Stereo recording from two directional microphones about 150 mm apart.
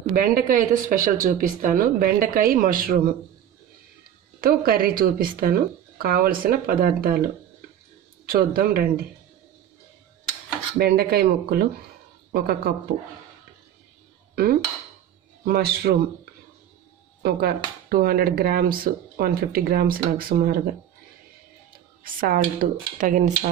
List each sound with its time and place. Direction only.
0.1 s speech: 75° right (ahead or behind)
4.4 s speech: 80° right
8.3 s speech: 80° right
10.8 s a woman's voice: 90° right
14.3 s dishes: 90° right
15.4 s speech: 90° right
17.2 s speech: 80° right
22.0 s speech: 70° right (ahead or behind)